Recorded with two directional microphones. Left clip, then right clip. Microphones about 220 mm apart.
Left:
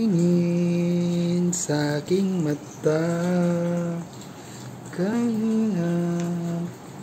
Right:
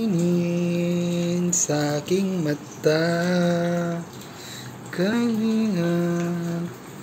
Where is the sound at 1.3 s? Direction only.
20° left (ahead or behind).